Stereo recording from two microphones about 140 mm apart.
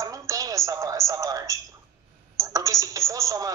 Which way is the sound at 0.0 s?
25° right (ahead or behind).